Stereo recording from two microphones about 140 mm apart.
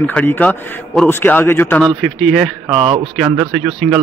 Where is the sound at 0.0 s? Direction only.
10° left (ahead or behind).